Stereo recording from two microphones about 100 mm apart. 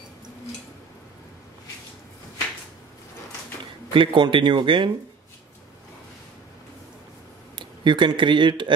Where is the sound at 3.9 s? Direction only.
55° right (ahead or behind).